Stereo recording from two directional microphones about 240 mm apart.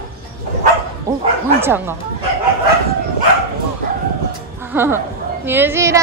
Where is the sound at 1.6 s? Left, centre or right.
Centre.